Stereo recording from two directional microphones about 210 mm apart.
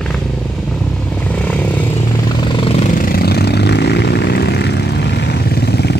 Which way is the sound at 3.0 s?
45° left (ahead or behind).